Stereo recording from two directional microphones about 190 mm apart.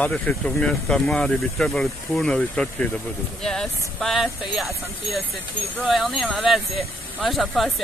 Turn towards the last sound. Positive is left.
turn(degrees=0)  # may be behind; listen again after turning